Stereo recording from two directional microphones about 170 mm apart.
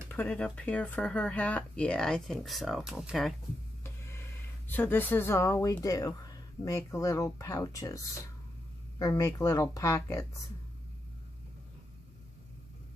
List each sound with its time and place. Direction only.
0.1 s speech: 10° left (ahead or behind)
3.8 s a sound: 15° left (ahead or behind)
6.9 s speech: 20° left (ahead or behind)